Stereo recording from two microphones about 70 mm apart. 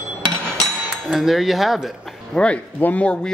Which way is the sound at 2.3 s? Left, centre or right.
Centre.